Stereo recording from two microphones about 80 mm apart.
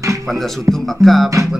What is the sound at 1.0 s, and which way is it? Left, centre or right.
Music, centre.